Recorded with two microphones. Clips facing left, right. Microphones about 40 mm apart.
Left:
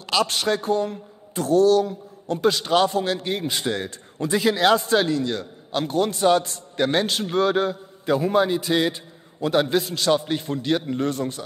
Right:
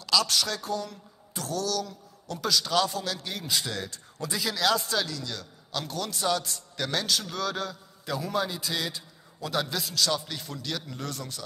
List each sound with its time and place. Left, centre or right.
0.0 s a man's voice: left